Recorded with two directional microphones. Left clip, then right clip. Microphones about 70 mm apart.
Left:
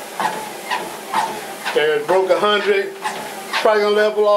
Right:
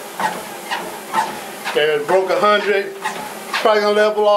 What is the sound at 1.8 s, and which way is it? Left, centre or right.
Speech, right.